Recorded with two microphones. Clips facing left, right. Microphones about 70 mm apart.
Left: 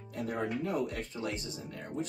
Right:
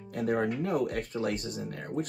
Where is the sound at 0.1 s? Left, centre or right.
Right.